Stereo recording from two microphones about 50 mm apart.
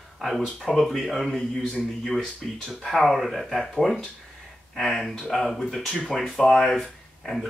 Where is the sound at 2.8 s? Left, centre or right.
Centre.